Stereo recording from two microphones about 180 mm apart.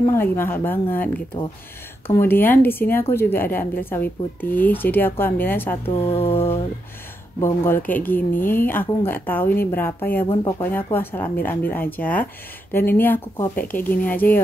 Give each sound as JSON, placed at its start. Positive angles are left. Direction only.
{"t": 0.0, "sound": "a woman's voice", "side_deg": 15}
{"t": 10.2, "sound": "speech", "side_deg": 30}
{"t": 10.6, "sound": "a woman's voice", "side_deg": 10}